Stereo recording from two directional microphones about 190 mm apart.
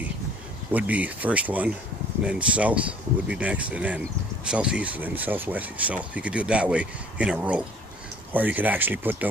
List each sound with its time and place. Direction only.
0.7 s speech: 10° right (ahead or behind)